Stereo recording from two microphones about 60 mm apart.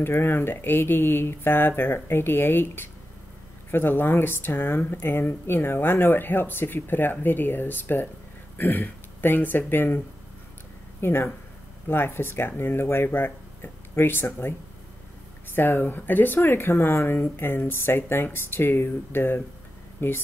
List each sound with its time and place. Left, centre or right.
0.0 s speech: left
15.5 s speech: left